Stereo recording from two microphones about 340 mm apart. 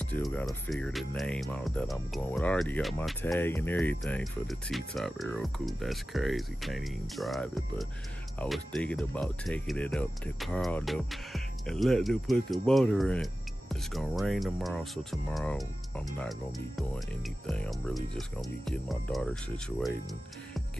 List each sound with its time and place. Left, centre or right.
0.0 s speech: centre